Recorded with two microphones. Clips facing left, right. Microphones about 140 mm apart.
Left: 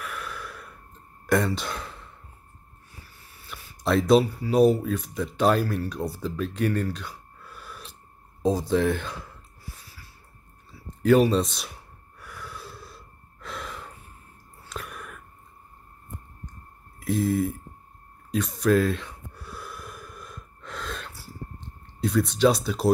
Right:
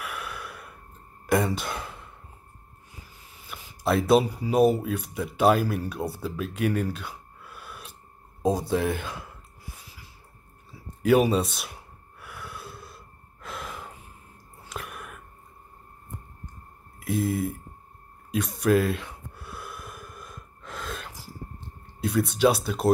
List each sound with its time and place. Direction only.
0.0 s gasp: 10° right (ahead or behind)
1.2 s speech: 5° right (ahead or behind)
3.0 s sniff: 15° right (ahead or behind)
3.8 s speech: 5° right (ahead or behind)
6.2 s a sound: 5° right (ahead or behind)
8.4 s speech: 5° right (ahead or behind)
11.0 s speech: 10° right (ahead or behind)
12.2 s gasp: 5° right (ahead or behind)
14.7 s whispering: 5° right (ahead or behind)
17.0 s speech: centre (ahead or behind)
18.3 s gasp: 5° right (ahead or behind)
22.4 s speech: 5° right (ahead or behind)